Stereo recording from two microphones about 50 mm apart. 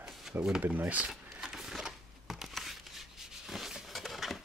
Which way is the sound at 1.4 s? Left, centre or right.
Centre.